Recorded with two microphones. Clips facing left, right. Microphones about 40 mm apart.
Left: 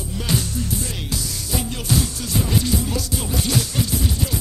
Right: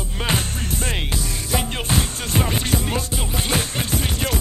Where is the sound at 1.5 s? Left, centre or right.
Right.